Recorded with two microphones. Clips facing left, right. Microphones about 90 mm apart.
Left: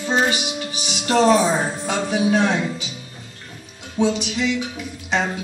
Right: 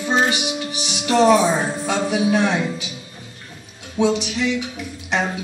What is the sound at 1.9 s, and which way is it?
Speech, 15° right (ahead or behind).